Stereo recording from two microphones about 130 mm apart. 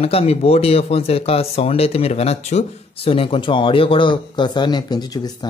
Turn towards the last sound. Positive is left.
turn(degrees=30)  # may be behind; listen again after turning